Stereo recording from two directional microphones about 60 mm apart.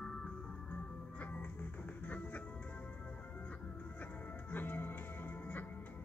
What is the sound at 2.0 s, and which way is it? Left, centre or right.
Music, left.